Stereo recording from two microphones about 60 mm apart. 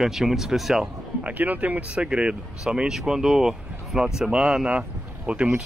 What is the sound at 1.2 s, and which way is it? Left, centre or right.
Speech, right.